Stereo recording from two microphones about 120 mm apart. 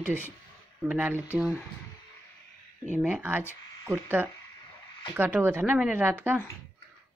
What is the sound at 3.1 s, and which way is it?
Speech, 15° right (ahead or behind).